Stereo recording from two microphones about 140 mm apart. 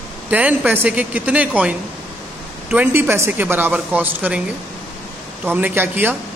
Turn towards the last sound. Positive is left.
turn(degrees=-15)  # may be behind; listen again after turning